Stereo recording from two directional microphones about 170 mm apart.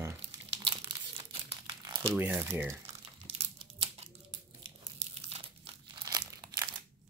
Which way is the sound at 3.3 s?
35° right (ahead or behind).